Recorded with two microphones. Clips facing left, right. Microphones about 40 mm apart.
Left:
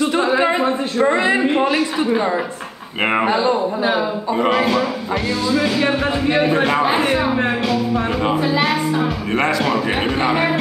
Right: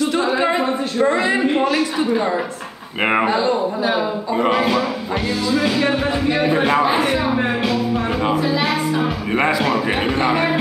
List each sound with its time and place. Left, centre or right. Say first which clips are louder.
0.2 s a man's voice: left 2 dB; centre
3.0 s music: even; centre
3.3 s a man's voice: left 1 dB; centre
3.5 s a man's voice: left 1 dB; centre
4.6 s music: left 1 dB; centre
6.8 s a man's voice: left 1 dB; centre
8.5 s music: left 1 dB; centre